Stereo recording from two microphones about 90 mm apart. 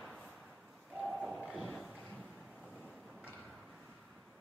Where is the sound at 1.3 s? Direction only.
10° right (ahead or behind).